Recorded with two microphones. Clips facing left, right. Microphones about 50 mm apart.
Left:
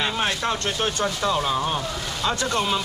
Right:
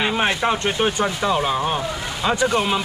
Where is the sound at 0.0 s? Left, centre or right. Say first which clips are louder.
Right 4 dB; right.